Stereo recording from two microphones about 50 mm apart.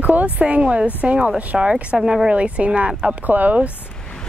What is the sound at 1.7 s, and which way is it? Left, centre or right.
Speech, centre.